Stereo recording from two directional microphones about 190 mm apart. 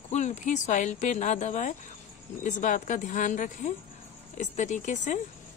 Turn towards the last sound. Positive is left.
turn(degrees=40)  # may be behind; listen again after turning